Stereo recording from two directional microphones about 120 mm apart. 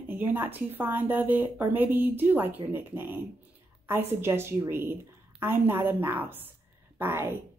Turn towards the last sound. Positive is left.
turn(degrees=-20)  # may be behind; listen again after turning